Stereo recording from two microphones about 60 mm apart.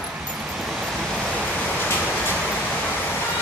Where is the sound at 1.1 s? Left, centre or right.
Centre.